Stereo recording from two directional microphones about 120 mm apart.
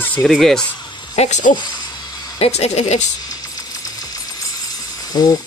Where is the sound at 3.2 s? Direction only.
30° left (ahead or behind).